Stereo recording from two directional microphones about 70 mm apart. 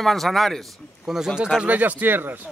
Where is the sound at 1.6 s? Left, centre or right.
Right.